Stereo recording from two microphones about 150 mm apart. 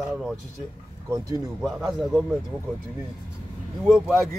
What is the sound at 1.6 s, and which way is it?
Speech, 5° right (ahead or behind).